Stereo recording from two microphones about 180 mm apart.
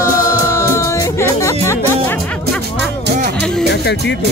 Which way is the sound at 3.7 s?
75° left (ahead or behind).